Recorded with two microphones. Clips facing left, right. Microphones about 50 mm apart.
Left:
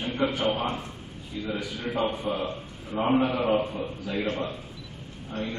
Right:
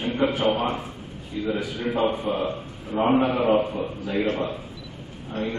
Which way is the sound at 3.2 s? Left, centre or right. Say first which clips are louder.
Right 4 dB; right.